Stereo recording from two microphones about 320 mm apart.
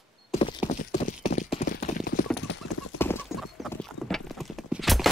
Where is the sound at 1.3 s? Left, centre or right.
Left.